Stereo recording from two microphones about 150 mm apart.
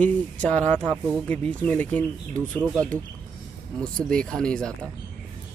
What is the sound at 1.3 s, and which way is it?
Speech, 10° left (ahead or behind).